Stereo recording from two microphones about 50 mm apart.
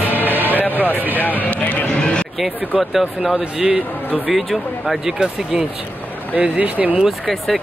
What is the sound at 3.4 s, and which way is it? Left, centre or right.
Speech, right.